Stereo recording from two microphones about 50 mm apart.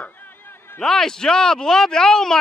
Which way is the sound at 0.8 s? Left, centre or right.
Centre.